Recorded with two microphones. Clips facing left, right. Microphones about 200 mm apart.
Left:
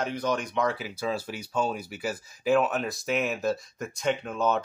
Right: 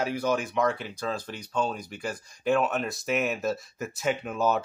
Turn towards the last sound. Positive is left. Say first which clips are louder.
# even
turn(degrees=-5)  # may be behind; listen again after turning